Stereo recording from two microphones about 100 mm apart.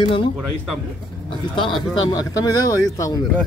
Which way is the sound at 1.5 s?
55° left (ahead or behind).